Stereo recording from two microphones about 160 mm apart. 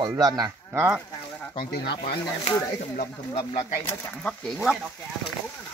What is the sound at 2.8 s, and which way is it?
Speech, 45° left (ahead or behind).